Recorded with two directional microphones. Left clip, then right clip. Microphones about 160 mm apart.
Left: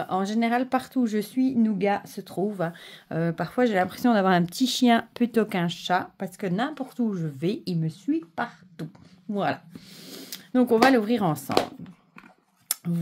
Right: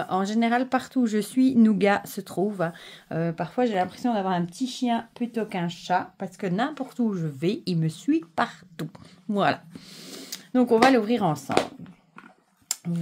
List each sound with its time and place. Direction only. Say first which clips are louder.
0.0 s speech: right 1 dB; 5° right (ahead or behind)
1.3 s speech: right 4 dB; 25° right (ahead or behind)
2.4 s speech: right 1 dB; 5° right (ahead or behind)
3.4 s speech: left 2 dB; 20° left (ahead or behind)
3.9 s speech: left 4 dB; 45° left (ahead or behind)
5.5 s speech: left 1 dB; 25° left (ahead or behind)
6.4 s speech: right 1 dB; centre (ahead or behind)
7.8 s speech: right 4 dB; 30° right (ahead or behind)
9.9 s a sound: right 1 dB; 5° right (ahead or behind)
10.9 s speech: right 1 dB; 5° left (ahead or behind)
12.6 s a sound: even; 15° left (ahead or behind)